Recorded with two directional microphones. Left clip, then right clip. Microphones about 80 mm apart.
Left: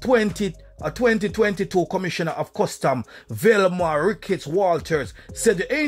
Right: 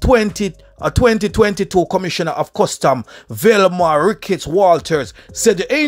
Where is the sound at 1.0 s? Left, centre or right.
Right.